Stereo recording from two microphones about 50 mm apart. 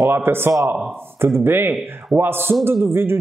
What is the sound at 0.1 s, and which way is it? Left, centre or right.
A man's voice, right.